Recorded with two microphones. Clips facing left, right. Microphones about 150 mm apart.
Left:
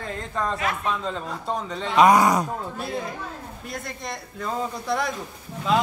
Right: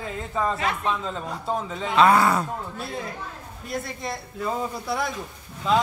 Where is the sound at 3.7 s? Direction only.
Centre (ahead or behind).